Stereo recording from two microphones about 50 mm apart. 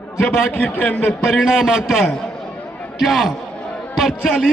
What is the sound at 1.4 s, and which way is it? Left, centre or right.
A man's voice, centre.